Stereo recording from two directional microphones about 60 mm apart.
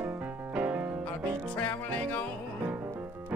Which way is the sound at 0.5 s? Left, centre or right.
Right.